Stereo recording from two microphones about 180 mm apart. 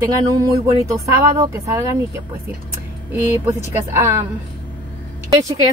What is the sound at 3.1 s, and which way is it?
Speech, 10° right (ahead or behind).